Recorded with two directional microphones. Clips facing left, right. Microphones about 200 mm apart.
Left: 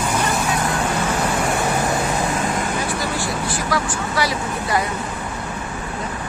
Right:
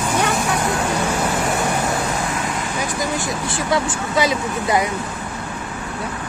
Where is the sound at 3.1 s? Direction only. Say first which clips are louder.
Even; 20° right (ahead or behind).